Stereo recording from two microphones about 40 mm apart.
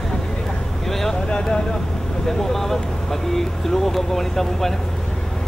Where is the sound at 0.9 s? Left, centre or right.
Centre.